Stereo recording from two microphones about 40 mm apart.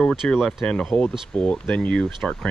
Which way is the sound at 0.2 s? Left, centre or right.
Left.